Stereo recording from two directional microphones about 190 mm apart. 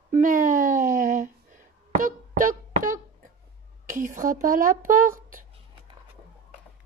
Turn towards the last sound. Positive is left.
turn(degrees=-45)  # may be behind; listen again after turning